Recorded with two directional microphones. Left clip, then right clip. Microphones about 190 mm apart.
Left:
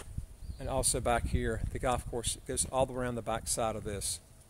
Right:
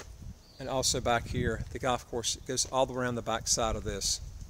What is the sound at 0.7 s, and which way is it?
Speech, 10° left (ahead or behind).